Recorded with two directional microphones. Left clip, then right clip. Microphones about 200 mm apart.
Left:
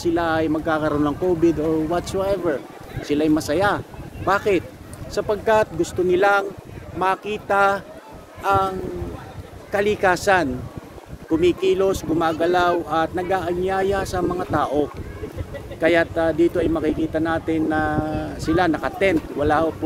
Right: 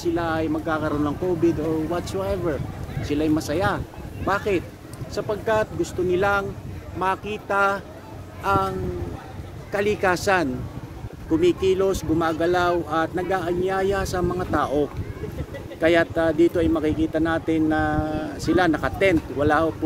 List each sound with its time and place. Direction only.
0.0 s speech: 40° left (ahead or behind)
7.0 s speech: 30° left (ahead or behind); by 19.7 s 15° right (ahead or behind)